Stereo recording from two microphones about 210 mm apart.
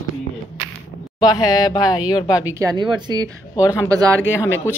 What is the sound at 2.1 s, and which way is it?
Speech, 20° left (ahead or behind).